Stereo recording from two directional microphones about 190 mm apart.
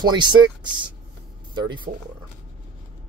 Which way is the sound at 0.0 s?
25° right (ahead or behind).